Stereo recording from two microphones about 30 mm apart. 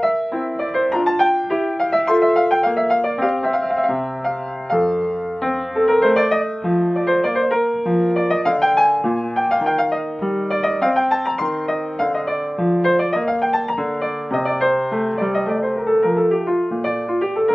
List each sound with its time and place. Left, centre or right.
0.7 s music: centre
1.8 s music: centre
5.8 s music: centre
10.6 s music: centre
12.8 s music: centre
14.3 s music: centre
15.9 s music: centre